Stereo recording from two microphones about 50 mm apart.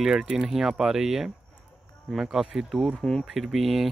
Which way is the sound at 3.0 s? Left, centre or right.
Centre.